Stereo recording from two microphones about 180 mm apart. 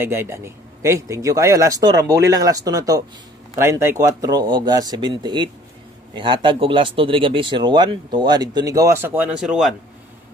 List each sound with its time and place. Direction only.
0.0 s speech: 15° right (ahead or behind)